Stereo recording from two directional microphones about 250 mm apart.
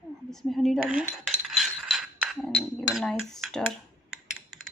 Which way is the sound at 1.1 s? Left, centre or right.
Centre.